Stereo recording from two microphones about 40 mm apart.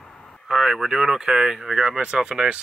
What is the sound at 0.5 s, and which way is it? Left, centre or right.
Speech, centre.